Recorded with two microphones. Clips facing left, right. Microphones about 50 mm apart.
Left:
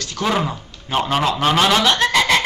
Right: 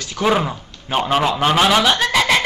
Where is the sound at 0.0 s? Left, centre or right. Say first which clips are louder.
Right 3 dB; centre.